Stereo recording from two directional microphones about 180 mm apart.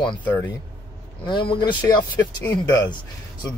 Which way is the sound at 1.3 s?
25° left (ahead or behind).